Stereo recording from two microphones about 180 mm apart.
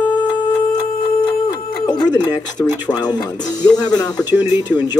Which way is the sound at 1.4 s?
20° left (ahead or behind).